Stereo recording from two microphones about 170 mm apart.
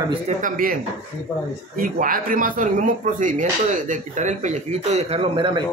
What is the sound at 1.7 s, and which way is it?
A man's voice, 55° right (ahead or behind).